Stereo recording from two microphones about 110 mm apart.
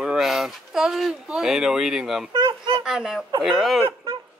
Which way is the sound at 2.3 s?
45° right (ahead or behind).